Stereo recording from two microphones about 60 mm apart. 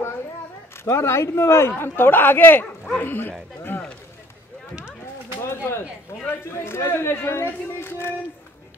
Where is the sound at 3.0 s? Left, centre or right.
Left.